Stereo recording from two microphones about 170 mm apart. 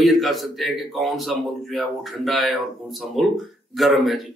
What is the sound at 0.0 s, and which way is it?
Speech, centre (ahead or behind).